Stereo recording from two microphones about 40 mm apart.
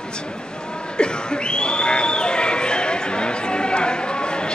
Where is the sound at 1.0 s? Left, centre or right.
Left.